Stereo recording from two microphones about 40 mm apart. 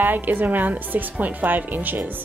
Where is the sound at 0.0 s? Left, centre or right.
Right.